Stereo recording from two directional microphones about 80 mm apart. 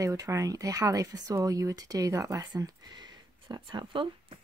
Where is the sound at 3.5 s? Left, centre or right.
Right.